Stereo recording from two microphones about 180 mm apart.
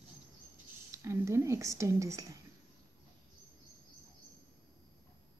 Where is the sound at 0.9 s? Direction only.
15° right (ahead or behind).